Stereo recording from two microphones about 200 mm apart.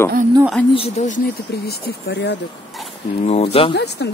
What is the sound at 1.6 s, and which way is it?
Speech, 55° left (ahead or behind).